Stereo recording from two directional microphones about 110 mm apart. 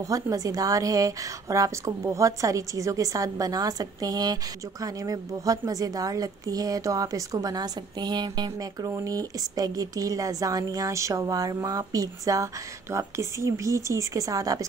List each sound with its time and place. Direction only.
0.0 s a woman's voice: 30° right (ahead or behind)
8.8 s a woman's voice: 30° right (ahead or behind)